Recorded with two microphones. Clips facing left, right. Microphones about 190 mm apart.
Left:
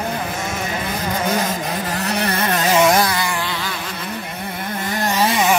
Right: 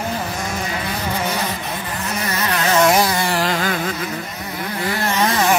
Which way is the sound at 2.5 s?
10° left (ahead or behind).